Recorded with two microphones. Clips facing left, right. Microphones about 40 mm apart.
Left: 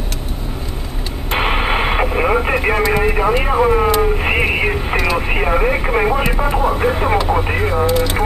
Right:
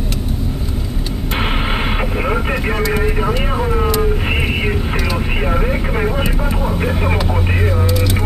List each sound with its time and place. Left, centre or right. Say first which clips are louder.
1.4 s radio: left 4 dB; centre
2.1 s vehicle: left 3 dB; left
3.0 s speech: left 3 dB; left
3.3 s vehicle: left 5 dB; left
5.1 s speech: left 3 dB; left